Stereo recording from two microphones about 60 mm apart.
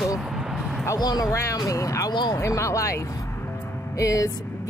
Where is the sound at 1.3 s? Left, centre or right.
Left.